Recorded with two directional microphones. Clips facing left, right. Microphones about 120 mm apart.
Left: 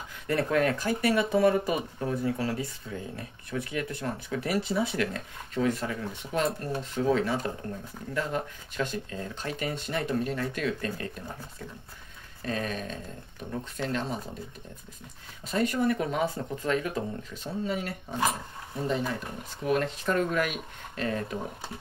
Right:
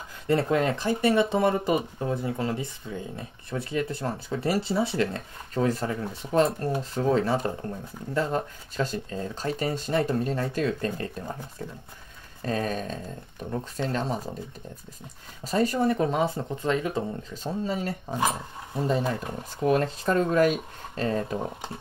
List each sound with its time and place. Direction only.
0.3 s speech: 25° right (ahead or behind)
12.4 s speech: 35° right (ahead or behind)
15.4 s speech: 35° right (ahead or behind)